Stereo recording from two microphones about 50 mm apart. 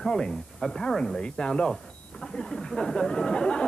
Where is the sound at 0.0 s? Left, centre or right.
Centre.